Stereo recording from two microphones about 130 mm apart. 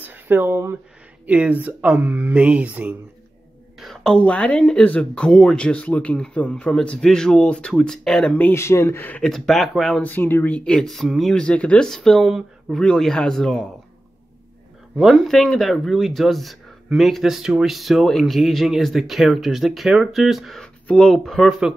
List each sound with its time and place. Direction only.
0.0 s speech: 15° right (ahead or behind)
3.8 s speech: 5° left (ahead or behind)
10.0 s speech: 15° left (ahead or behind)
15.0 s speech: 5° right (ahead or behind)